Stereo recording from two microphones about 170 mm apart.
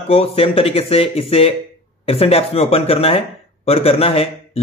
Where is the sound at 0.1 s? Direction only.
35° left (ahead or behind).